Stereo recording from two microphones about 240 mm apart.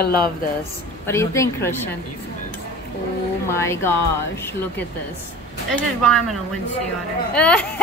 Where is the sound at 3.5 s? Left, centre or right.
Centre.